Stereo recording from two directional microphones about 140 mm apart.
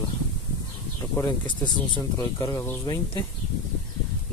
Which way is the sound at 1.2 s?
35° left (ahead or behind).